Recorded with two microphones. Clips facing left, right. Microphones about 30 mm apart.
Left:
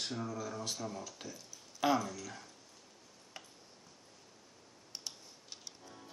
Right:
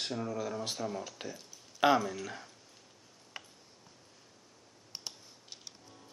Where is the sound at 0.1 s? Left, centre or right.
Centre.